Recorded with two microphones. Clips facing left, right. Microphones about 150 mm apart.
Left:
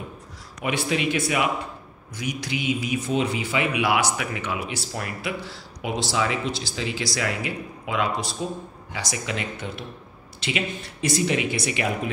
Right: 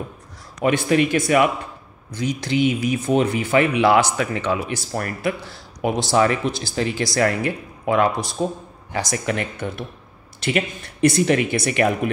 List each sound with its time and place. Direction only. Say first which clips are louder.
0.6 s speech: right 8 dB; 50° right (ahead or behind)
2.8 s speech: right 5 dB; 50° right (ahead or behind)
4.2 s speech: right 7 dB; 35° right (ahead or behind)
4.6 s speech: right 5 dB; 45° right (ahead or behind)